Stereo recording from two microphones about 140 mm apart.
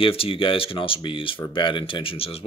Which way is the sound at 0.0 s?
40° left (ahead or behind).